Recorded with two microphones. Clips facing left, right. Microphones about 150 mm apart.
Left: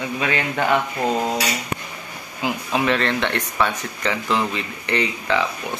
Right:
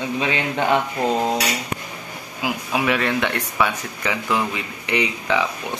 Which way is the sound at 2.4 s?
10° right (ahead or behind).